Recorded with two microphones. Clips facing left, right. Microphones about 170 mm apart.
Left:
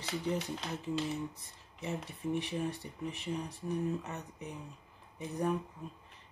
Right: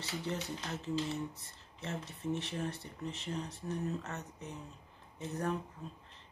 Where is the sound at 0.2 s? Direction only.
15° left (ahead or behind).